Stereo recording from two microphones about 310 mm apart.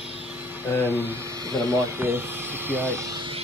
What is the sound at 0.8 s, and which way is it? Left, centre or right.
Speech, centre.